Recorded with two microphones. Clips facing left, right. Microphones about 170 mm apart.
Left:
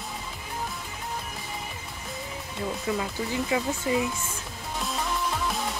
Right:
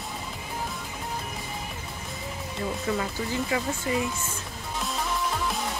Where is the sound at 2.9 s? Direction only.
10° left (ahead or behind).